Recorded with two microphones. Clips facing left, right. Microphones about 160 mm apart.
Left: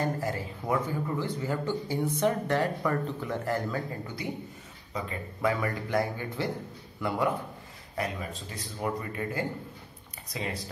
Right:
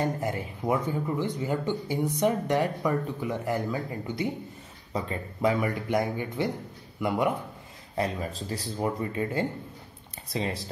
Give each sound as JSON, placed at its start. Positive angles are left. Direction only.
{"t": 0.0, "sound": "speech", "side_deg": -20}
{"t": 7.9, "sound": "speech", "side_deg": -30}